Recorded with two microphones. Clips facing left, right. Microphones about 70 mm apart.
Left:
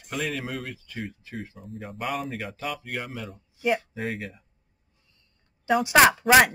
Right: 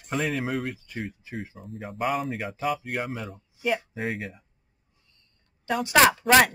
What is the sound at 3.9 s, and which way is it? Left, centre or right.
Speech, centre.